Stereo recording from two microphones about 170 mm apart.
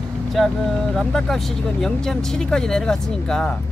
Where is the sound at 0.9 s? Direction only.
Centre (ahead or behind).